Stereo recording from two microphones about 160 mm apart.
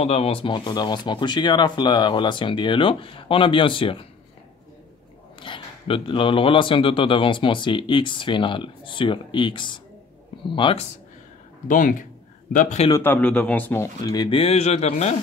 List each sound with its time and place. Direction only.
0.0 s a man's voice: 40° left (ahead or behind)
5.4 s a man's voice: 30° left (ahead or behind)
11.6 s speech: 55° left (ahead or behind)
12.9 s speech: 15° left (ahead or behind)
14.0 s a man's voice: 25° left (ahead or behind); by 15.1 s 40° left (ahead or behind)